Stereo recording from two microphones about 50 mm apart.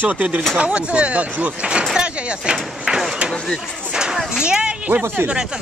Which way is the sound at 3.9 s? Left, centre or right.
Centre.